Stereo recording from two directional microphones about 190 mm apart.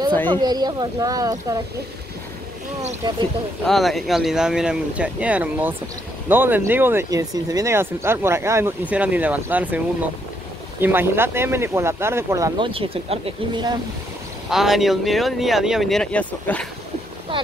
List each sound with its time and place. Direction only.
0.3 s speech: 20° right (ahead or behind)
3.6 s speech: centre (ahead or behind)
10.8 s speech: 10° right (ahead or behind); by 13.7 s 25° right (ahead or behind)
14.5 s speech: centre (ahead or behind)